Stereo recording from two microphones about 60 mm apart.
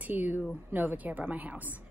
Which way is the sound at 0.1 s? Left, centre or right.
Right.